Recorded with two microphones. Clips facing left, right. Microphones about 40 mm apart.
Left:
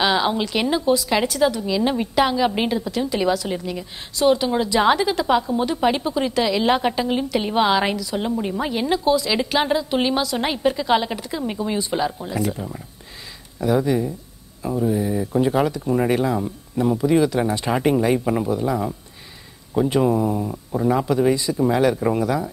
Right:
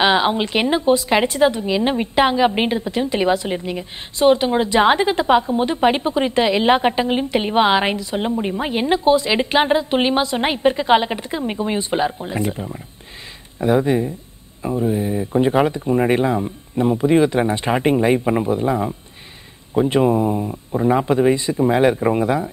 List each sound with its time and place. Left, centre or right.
0.0 s a woman's voice: right